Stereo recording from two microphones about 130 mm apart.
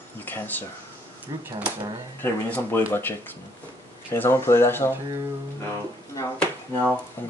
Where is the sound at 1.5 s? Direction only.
10° right (ahead or behind).